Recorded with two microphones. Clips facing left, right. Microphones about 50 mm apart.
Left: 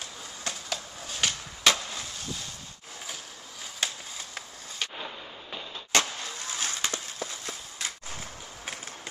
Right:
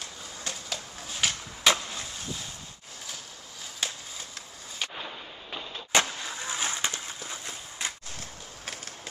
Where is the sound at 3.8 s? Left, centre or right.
Centre; by 7.9 s right.